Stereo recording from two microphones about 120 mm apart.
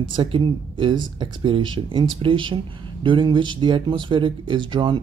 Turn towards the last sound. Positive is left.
turn(degrees=-40)  # may be behind; listen again after turning